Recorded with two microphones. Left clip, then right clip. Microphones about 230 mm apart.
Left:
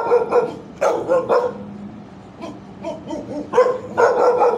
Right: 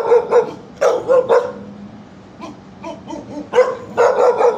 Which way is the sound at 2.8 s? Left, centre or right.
Centre.